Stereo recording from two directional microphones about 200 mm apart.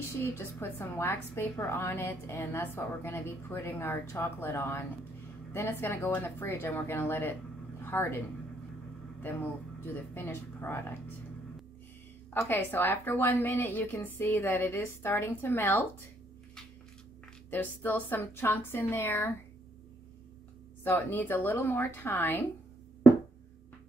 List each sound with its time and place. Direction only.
0.2 s a woman's voice: 10° left (ahead or behind)
9.2 s a woman's voice: 10° left (ahead or behind)
12.3 s a woman's voice: 10° left (ahead or behind)
17.5 s a woman's voice: 10° left (ahead or behind)
20.8 s a woman's voice: 10° left (ahead or behind)